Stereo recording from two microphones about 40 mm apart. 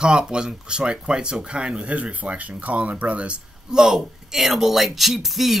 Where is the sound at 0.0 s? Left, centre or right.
Right.